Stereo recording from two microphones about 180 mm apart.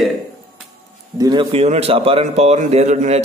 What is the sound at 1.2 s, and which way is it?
Speech, 25° right (ahead or behind).